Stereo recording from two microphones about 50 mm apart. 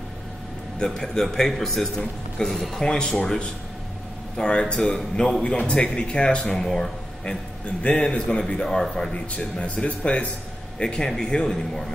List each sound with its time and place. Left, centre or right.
0.7 s a man's voice: centre
4.4 s a man's voice: centre
9.3 s a man's voice: left